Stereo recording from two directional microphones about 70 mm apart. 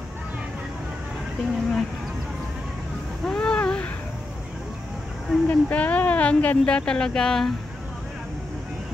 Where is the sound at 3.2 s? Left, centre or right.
Centre.